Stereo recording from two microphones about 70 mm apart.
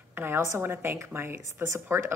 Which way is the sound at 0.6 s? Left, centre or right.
Right.